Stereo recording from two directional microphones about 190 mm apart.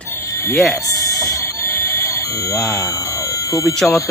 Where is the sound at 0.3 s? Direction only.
15° left (ahead or behind).